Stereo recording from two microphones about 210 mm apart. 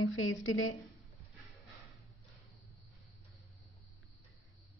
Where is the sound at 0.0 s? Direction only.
75° left (ahead or behind).